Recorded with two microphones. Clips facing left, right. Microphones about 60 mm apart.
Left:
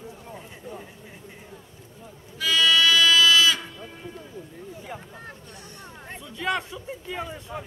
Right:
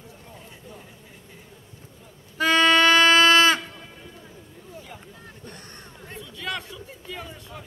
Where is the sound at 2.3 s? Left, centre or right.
Right.